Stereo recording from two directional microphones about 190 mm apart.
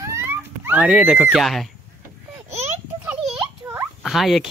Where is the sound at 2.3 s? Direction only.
15° right (ahead or behind).